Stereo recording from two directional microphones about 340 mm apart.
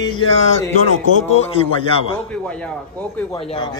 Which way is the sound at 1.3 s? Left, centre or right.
Centre.